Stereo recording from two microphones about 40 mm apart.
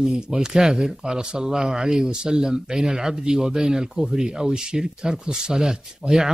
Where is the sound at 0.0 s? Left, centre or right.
Centre.